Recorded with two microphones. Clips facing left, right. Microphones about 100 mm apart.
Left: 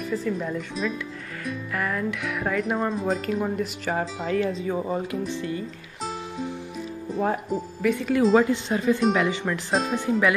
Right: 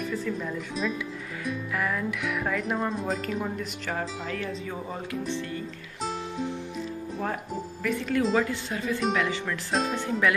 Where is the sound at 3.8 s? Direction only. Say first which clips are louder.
Left 4 dB; 35° left (ahead or behind).